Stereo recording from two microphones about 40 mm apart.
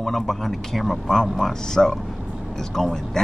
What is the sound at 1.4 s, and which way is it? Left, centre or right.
Speech, centre.